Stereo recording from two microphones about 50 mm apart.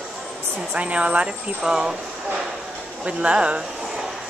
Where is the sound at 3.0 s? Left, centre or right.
Right.